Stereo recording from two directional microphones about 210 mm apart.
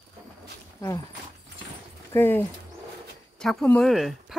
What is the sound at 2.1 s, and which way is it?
Speech, 10° left (ahead or behind).